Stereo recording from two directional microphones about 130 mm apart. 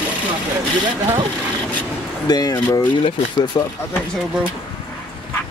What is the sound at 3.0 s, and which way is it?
Speech, 40° left (ahead or behind).